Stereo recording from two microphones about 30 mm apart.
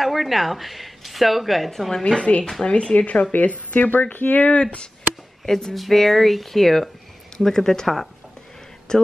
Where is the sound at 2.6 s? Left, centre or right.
Left.